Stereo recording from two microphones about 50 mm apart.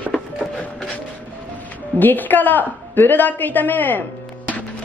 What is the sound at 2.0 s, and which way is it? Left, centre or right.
A woman's voice, left.